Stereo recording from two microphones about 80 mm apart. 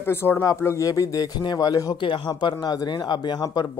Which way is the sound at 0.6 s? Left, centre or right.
Left.